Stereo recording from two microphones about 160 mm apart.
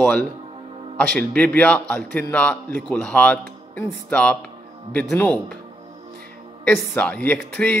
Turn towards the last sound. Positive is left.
turn(degrees=10)  # may be behind; listen again after turning